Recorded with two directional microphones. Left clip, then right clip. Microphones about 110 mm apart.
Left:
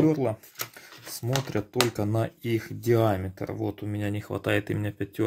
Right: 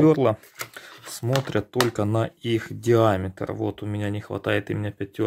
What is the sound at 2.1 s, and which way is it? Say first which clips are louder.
Speech: right 4 dB; 30° right (ahead or behind).